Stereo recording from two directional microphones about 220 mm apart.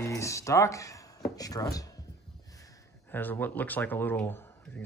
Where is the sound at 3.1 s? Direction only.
10° left (ahead or behind).